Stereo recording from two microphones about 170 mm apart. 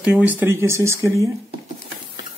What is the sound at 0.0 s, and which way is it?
Speech, 10° right (ahead or behind).